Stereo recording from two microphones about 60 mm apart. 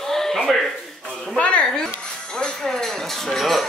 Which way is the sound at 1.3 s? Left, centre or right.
Centre.